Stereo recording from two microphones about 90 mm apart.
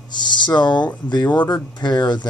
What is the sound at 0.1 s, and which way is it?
Speech, 55° left (ahead or behind).